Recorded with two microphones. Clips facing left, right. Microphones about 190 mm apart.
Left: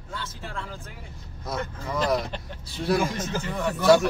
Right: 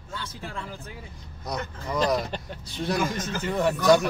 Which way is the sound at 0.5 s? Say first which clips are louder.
Left 2 dB; 15° right (ahead or behind).